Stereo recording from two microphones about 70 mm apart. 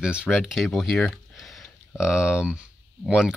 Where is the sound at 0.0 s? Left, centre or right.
Centre.